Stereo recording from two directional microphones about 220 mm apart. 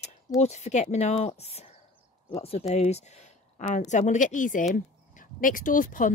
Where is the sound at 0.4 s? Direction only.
30° left (ahead or behind).